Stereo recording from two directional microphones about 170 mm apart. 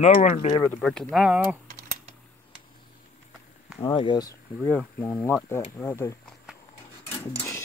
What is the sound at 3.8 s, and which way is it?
Speech, 25° left (ahead or behind).